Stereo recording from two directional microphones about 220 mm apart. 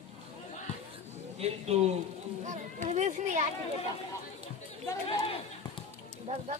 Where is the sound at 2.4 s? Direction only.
35° right (ahead or behind).